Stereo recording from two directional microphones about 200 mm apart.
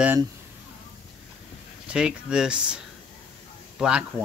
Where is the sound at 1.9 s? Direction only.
5° right (ahead or behind).